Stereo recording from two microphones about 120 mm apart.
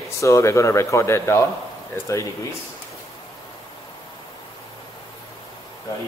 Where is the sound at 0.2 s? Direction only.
25° left (ahead or behind).